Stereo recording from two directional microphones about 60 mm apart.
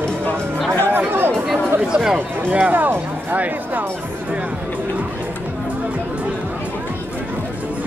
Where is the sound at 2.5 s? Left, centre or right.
Right.